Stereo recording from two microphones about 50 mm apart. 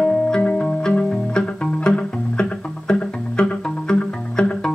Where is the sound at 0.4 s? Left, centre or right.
Left.